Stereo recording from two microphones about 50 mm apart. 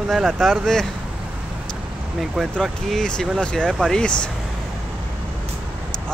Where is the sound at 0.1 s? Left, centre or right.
Centre.